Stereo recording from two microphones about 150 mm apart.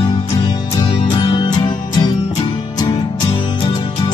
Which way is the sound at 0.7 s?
30° left (ahead or behind).